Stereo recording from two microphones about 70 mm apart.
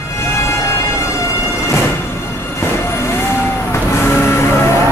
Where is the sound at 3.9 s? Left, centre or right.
Left.